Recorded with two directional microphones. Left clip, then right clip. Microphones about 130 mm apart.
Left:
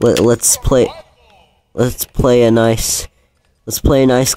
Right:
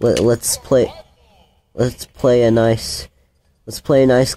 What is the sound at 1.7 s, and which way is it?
Speech, 50° left (ahead or behind).